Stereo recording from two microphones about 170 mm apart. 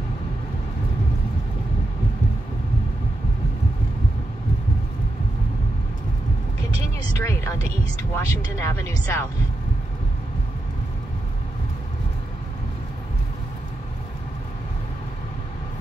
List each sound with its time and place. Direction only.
7.2 s speech: 20° left (ahead or behind)